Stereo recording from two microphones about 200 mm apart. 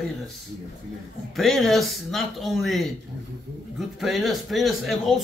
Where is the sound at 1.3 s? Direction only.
Centre (ahead or behind).